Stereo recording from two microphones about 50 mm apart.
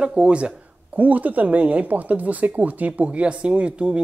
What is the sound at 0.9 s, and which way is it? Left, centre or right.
Speech, right.